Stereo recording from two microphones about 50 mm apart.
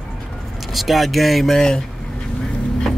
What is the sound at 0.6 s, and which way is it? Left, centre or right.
Speech, centre.